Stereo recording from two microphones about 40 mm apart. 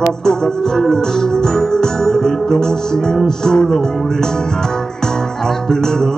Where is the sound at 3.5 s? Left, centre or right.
Centre.